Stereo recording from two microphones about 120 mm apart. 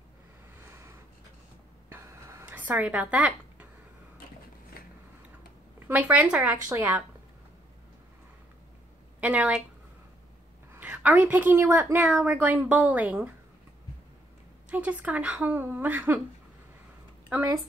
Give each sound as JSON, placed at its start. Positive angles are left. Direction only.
{"t": 0.6, "sound": "a sound", "side_deg": -20}
{"t": 5.9, "sound": "a woman's voice", "side_deg": -15}
{"t": 9.2, "sound": "a woman's voice", "side_deg": -10}
{"t": 10.7, "sound": "a woman's voice", "side_deg": -15}
{"t": 14.7, "sound": "a woman's voice", "side_deg": -10}